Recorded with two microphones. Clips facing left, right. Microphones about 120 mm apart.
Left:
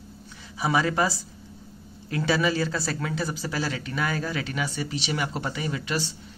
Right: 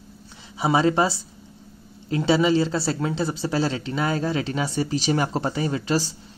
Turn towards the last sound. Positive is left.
turn(degrees=-35)  # may be behind; listen again after turning